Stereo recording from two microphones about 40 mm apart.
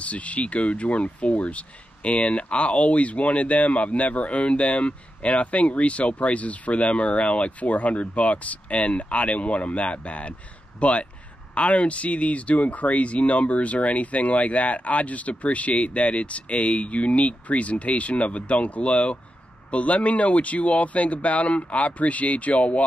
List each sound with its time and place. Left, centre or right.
0.0 s speech: left